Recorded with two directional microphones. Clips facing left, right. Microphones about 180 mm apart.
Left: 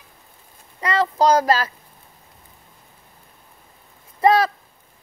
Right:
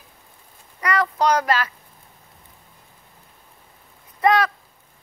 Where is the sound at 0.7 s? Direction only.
25° left (ahead or behind).